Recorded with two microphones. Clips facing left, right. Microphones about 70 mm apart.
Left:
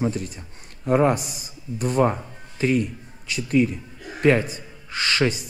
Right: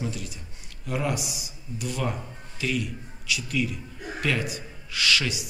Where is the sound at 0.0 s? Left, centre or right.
Left.